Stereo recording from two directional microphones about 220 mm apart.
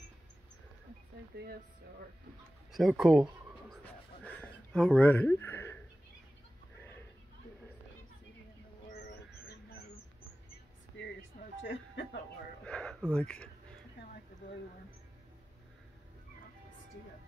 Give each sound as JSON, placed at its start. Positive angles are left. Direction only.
{"t": 1.3, "sound": "speech", "side_deg": -45}
{"t": 2.7, "sound": "speech", "side_deg": 0}
{"t": 3.8, "sound": "a sound", "side_deg": 5}
{"t": 10.9, "sound": "a sound", "side_deg": 55}
{"t": 11.6, "sound": "speech", "side_deg": 55}
{"t": 12.6, "sound": "speech", "side_deg": 5}